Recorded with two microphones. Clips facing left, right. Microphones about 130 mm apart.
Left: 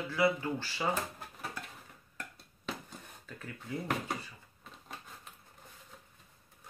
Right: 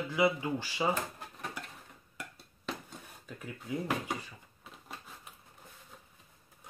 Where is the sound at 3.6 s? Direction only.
5° right (ahead or behind).